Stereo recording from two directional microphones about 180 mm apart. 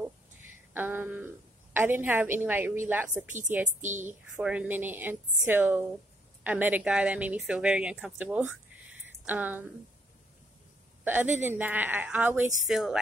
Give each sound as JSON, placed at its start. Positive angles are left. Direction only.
{"t": 0.7, "sound": "a woman's voice", "side_deg": -10}
{"t": 11.1, "sound": "a woman's voice", "side_deg": -10}